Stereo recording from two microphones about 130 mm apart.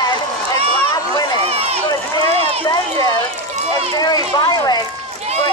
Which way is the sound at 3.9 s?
30° left (ahead or behind).